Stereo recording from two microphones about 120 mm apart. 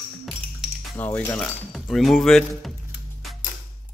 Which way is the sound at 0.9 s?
15° left (ahead or behind).